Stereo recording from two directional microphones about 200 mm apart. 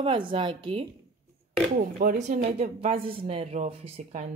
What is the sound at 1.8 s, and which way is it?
Speech, 45° right (ahead or behind).